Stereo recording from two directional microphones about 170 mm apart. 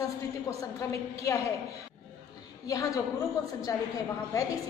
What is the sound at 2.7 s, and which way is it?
A woman's voice, 20° left (ahead or behind).